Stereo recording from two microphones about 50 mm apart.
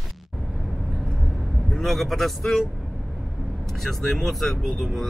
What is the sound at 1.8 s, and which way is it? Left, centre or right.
Speech, centre.